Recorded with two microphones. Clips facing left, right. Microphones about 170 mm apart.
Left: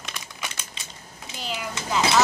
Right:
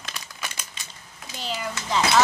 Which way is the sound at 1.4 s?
5° left (ahead or behind).